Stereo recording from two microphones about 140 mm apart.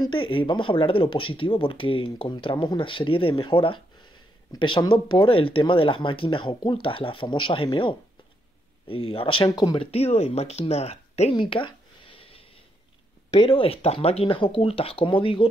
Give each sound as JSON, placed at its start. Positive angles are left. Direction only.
{"t": 0.1, "sound": "speech", "side_deg": 35}
{"t": 9.8, "sound": "speech", "side_deg": 45}